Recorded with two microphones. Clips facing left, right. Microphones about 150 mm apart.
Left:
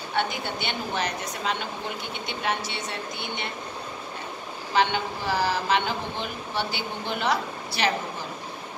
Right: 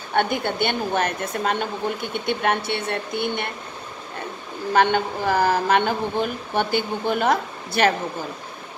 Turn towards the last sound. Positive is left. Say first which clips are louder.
# right 6 dB
turn(degrees=-50)  # may be behind; listen again after turning